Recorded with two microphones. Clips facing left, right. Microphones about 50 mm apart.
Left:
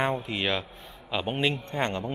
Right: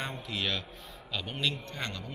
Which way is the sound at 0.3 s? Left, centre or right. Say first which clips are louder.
Left 5 dB; left.